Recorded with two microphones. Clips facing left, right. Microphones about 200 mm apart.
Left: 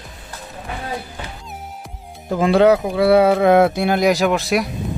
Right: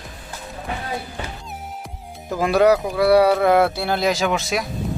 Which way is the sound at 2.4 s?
25° left (ahead or behind).